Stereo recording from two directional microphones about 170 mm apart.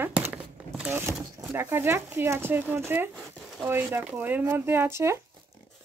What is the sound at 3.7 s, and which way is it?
A woman's voice, 10° right (ahead or behind).